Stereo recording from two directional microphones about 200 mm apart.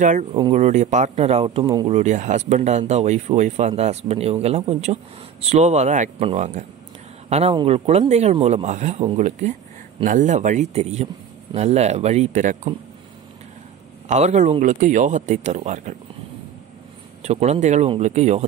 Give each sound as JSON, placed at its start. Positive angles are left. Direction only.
{"t": 0.0, "sound": "speech", "side_deg": -35}
{"t": 14.0, "sound": "speech", "side_deg": -35}
{"t": 17.2, "sound": "speech", "side_deg": -35}